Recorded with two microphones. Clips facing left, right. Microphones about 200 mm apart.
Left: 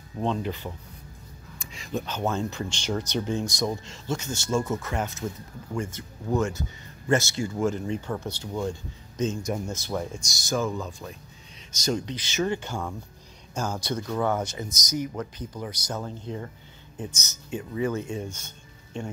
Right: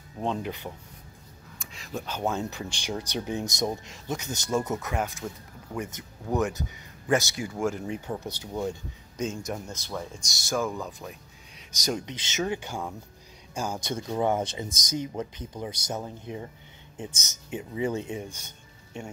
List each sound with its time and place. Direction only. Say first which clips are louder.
0.2 s speech: left 2 dB; 10° right (ahead or behind)
9.5 s speech: left 5 dB; 5° left (ahead or behind)
10.7 s speech: left 2 dB; 15° right (ahead or behind)
13.8 s speech: right 1 dB; 20° right (ahead or behind)